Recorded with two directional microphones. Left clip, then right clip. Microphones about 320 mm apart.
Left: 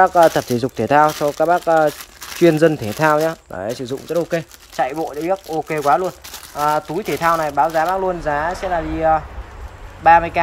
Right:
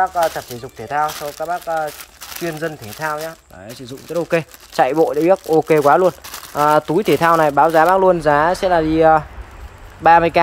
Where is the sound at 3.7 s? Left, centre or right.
Centre.